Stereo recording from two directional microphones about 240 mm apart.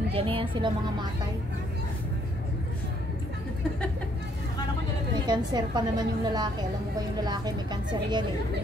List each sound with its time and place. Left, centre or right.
0.1 s speech: right
5.2 s speech: centre